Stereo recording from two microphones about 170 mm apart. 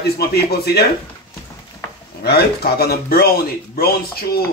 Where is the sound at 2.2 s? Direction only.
70° left (ahead or behind).